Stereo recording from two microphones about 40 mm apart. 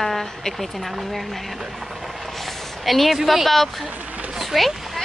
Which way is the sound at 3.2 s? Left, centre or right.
Centre.